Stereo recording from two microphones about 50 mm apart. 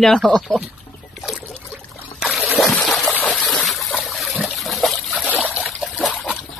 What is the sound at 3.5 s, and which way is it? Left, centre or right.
Water, centre.